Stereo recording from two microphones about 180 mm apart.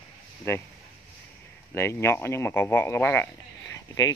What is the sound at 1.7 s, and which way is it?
Speech, 15° left (ahead or behind).